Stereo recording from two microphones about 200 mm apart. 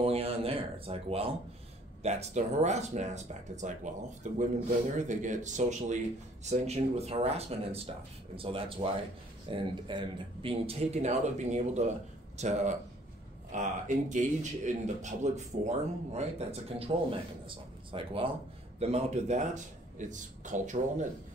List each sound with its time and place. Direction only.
0.0 s speech: 30° right (ahead or behind)